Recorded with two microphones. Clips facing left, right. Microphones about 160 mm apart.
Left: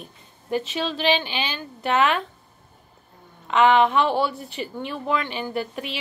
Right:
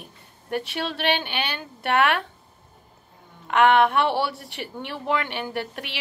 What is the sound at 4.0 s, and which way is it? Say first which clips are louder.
A woman's voice: left 2 dB; 75° right (ahead or behind).